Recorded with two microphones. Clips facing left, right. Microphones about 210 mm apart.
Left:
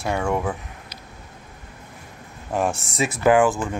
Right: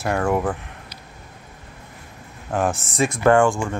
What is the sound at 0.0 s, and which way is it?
Speech, 5° right (ahead or behind).